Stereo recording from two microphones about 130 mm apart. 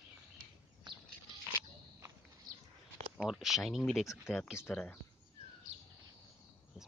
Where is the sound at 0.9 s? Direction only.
35° right (ahead or behind).